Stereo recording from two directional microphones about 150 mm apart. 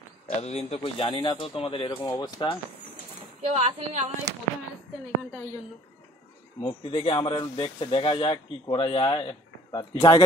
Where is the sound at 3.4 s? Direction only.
50° right (ahead or behind).